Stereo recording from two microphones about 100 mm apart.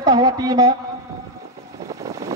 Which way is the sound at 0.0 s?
45° right (ahead or behind).